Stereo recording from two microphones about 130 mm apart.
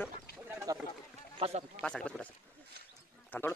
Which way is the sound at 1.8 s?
10° left (ahead or behind).